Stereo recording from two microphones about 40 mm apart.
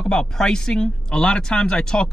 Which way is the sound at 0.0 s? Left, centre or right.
Centre.